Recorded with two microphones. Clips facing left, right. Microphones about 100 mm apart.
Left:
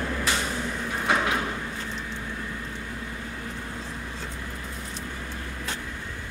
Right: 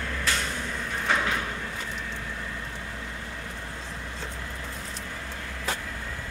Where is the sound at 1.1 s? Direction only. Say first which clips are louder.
Left 2 dB; 15° left (ahead or behind).